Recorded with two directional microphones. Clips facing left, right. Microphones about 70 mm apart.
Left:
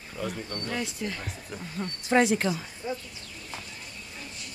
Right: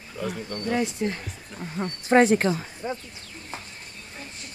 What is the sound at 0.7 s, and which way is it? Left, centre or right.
Speech, right.